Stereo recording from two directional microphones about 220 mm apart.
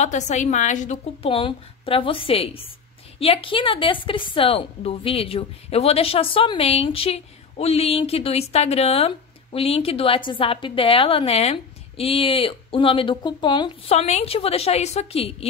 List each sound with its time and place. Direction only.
0.0 s a woman's voice: 30° left (ahead or behind)